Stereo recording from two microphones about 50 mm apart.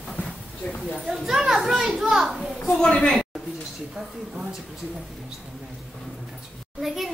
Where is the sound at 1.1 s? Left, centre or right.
Centre.